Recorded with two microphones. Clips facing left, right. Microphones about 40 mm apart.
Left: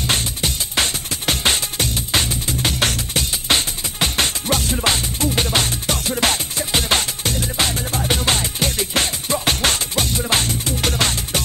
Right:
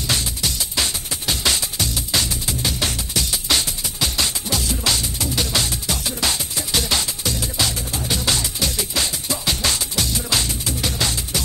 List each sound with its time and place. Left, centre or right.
0.0 s music: left
3.4 s music: left